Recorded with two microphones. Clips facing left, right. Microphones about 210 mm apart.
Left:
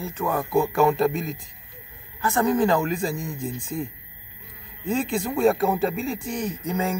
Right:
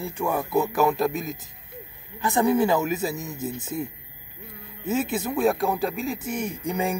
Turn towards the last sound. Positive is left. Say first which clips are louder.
# even
turn(degrees=-15)  # may be behind; listen again after turning